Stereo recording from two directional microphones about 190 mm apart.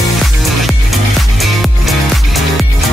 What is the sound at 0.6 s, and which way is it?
Music, centre (ahead or behind).